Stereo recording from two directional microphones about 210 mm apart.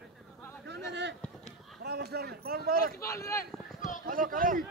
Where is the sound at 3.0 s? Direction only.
15° left (ahead or behind).